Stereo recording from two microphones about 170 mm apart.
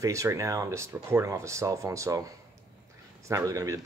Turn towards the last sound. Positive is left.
turn(degrees=-20)  # may be behind; listen again after turning